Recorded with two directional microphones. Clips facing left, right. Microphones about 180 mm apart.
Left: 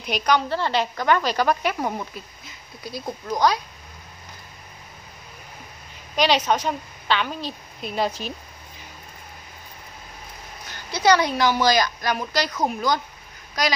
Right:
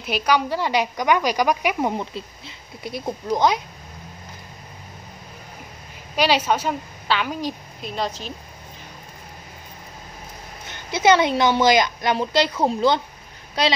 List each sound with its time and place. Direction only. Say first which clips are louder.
0.0 s a woman's voice: right 1 dB; 5° right (ahead or behind); by 3.6 s 20° right (ahead or behind)
6.1 s a woman's voice: even; 5° right (ahead or behind)
7.8 s a woman's voice: left 2 dB; 5° left (ahead or behind)
10.7 s speech: right 2 dB; 20° right (ahead or behind)